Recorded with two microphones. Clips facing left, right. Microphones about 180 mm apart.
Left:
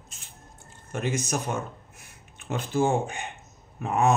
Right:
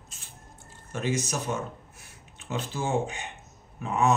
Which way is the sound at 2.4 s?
50° left (ahead or behind).